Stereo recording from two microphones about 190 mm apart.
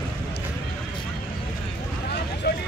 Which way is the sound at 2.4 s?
55° left (ahead or behind).